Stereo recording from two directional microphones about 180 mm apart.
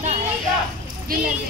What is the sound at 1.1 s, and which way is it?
Speech, 50° right (ahead or behind).